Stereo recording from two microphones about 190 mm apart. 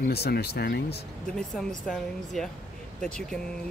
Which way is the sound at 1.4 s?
5° left (ahead or behind).